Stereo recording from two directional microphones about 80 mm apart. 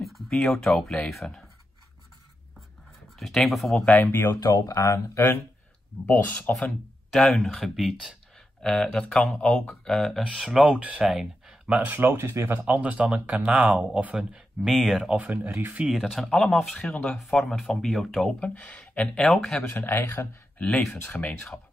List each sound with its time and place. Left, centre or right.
0.0 s a sound: centre
0.4 s speech: centre
3.2 s speech: centre
3.8 s speech: left
4.4 s speech: left
7.1 s speech: centre
11.1 s speech: centre
11.9 s speech: right
12.4 s speech: right
16.2 s speech: centre
18.4 s speech: centre
19.7 s speech: left
21.1 s speech: centre